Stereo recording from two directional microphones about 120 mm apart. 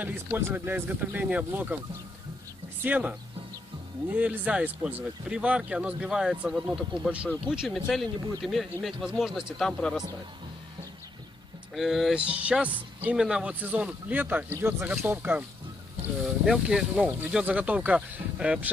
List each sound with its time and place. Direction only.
0.0 s speech: 15° right (ahead or behind)
2.8 s speech: 15° right (ahead or behind); by 10.0 s 5° left (ahead or behind)
11.7 s speech: centre (ahead or behind); by 15.4 s 20° right (ahead or behind)
16.4 s speech: 5° right (ahead or behind)